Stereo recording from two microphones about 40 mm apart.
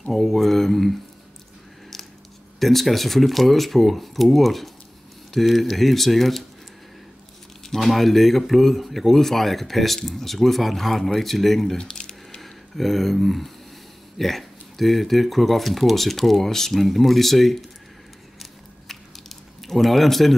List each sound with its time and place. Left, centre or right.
0.0 s speech: centre
2.6 s speech: centre
7.6 s speech: centre
11.8 s squish: centre
12.4 s speech: centre
18.4 s biting: centre